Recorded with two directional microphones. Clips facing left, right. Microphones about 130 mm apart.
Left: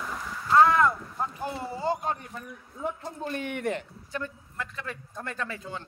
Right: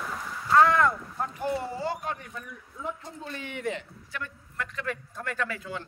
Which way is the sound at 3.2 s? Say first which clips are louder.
Left 5 dB; 55° left (ahead or behind).